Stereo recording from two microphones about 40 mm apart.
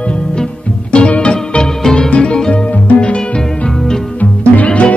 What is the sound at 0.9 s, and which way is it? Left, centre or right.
Music, left.